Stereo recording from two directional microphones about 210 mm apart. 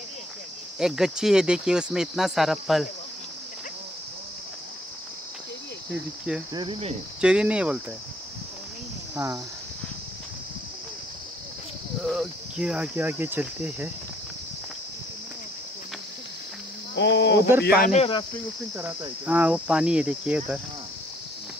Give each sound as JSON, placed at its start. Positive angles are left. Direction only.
{"t": 0.7, "sound": "speech", "side_deg": -5}
{"t": 6.5, "sound": "cricket", "side_deg": -25}
{"t": 7.2, "sound": "speech", "side_deg": -5}
{"t": 9.1, "sound": "speech", "side_deg": -15}
{"t": 12.0, "sound": "speech", "side_deg": 0}
{"t": 16.9, "sound": "speech", "side_deg": 60}
{"t": 17.6, "sound": "speech", "side_deg": 45}
{"t": 17.9, "sound": "speech", "side_deg": 25}
{"t": 18.8, "sound": "speech", "side_deg": -5}